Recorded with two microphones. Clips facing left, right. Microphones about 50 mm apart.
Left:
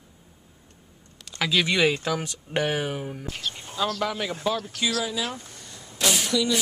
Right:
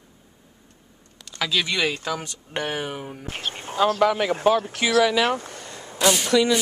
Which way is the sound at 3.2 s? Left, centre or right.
Right.